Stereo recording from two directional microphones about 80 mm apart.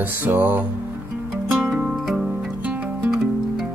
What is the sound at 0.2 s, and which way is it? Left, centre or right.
Music, right.